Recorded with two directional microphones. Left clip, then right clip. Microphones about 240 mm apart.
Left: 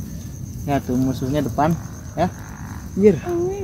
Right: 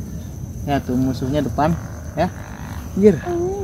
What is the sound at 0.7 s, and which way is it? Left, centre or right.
Speech, centre.